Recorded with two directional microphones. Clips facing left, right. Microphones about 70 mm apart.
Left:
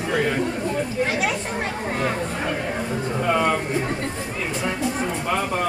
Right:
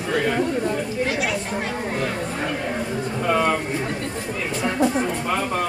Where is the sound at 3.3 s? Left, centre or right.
Centre.